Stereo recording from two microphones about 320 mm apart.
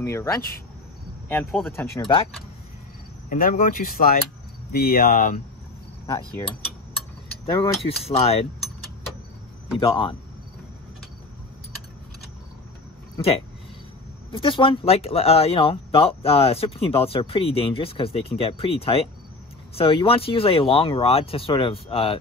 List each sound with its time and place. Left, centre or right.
0.0 s speech: centre
3.3 s speech: left
7.6 s speech: centre
9.8 s speech: centre
14.3 s speech: centre